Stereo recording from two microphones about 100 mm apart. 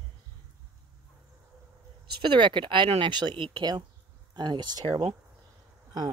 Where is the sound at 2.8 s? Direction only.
65° right (ahead or behind).